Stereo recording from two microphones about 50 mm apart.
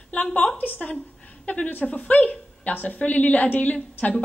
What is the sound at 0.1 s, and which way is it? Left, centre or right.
A woman's voice, left.